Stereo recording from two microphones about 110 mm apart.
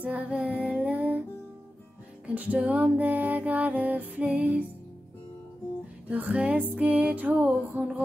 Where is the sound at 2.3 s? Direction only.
10° right (ahead or behind).